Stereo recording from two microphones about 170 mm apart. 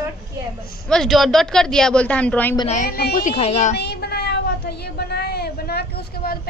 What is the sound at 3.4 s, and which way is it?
Speech, 40° left (ahead or behind).